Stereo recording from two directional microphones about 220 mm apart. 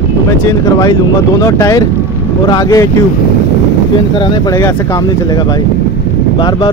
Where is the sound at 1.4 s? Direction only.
15° left (ahead or behind).